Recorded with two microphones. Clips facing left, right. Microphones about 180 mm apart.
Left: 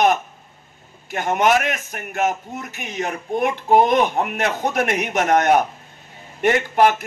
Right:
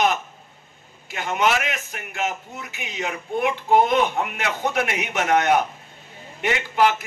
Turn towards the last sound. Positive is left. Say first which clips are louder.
# left 4 dB
turn(degrees=45)  # may be behind; listen again after turning